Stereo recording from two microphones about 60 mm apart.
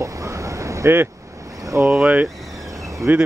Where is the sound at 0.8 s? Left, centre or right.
Right.